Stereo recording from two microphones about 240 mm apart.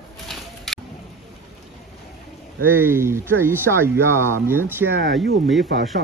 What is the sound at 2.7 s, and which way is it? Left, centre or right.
Speech, centre.